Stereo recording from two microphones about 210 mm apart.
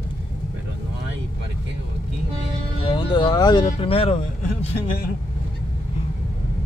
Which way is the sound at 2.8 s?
25° left (ahead or behind).